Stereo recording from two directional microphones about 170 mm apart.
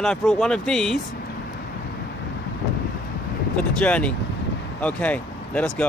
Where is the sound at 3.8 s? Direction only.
10° left (ahead or behind).